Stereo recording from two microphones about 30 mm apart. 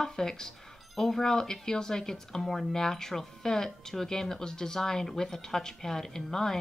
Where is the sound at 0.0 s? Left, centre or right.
Left.